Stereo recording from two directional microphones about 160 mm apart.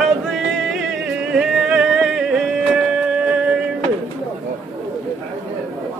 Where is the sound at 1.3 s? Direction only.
5° right (ahead or behind).